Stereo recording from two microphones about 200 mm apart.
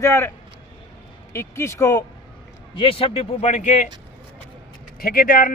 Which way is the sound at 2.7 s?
25° left (ahead or behind).